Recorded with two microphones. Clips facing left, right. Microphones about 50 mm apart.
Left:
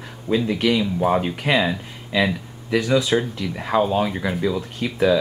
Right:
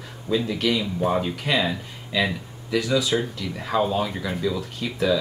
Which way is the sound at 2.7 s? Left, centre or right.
Left.